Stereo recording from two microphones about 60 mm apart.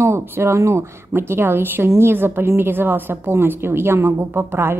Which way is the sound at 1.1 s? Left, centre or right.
Right.